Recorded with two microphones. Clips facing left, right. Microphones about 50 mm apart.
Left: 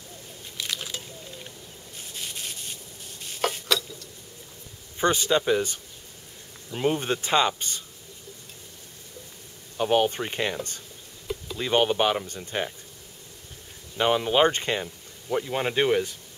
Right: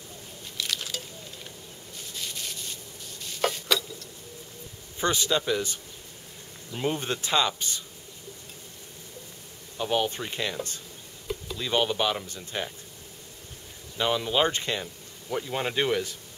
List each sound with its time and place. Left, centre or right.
0.6 s a sound: centre
2.1 s rub: centre
3.3 s stir: centre
4.9 s speech: left
6.7 s speech: centre
7.0 s speech: left
9.8 s speech: left
11.5 s speech: left
13.9 s speech: left
15.2 s speech: centre